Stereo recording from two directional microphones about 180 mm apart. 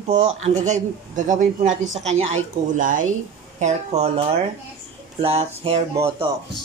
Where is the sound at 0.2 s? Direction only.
40° right (ahead or behind).